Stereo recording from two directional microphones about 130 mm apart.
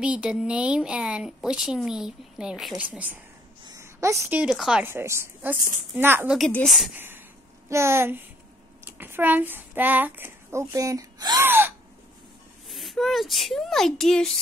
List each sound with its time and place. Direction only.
0.0 s speech: 10° right (ahead or behind)
3.6 s a sound: 25° right (ahead or behind)
4.4 s speech: 5° right (ahead or behind)
4.8 s a woman's voice: 20° right (ahead or behind)
6.5 s speech: centre (ahead or behind)
6.9 s a woman's voice: 15° right (ahead or behind)
11.4 s gasp: 15° right (ahead or behind)
12.6 s speech: centre (ahead or behind)